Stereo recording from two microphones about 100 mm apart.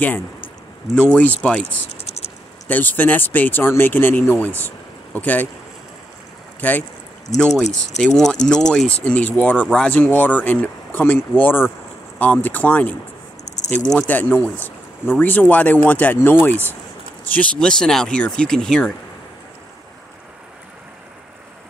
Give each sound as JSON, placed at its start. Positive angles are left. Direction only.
{"t": 0.9, "sound": "speech", "side_deg": 15}
{"t": 2.0, "sound": "a sound", "side_deg": 90}
{"t": 2.7, "sound": "speech", "side_deg": 15}
{"t": 6.6, "sound": "speech", "side_deg": 15}
{"t": 7.3, "sound": "speech", "side_deg": 5}